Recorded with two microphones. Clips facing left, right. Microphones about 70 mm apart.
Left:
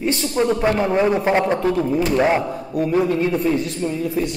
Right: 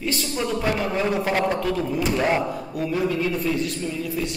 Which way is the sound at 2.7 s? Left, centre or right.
Left.